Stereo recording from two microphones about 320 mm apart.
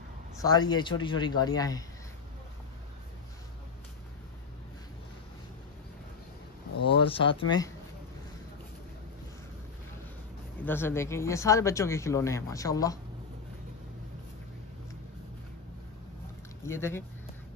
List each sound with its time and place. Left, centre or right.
0.4 s speech: centre
6.9 s speech: centre
10.6 s speech: centre
16.6 s speech: centre